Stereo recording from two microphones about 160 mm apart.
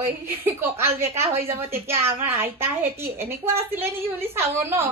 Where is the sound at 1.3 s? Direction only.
40° right (ahead or behind).